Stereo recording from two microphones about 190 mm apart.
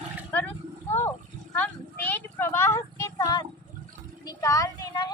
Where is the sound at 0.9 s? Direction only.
10° left (ahead or behind).